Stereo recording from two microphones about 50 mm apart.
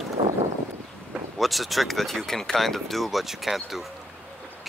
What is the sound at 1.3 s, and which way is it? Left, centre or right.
Speech, centre.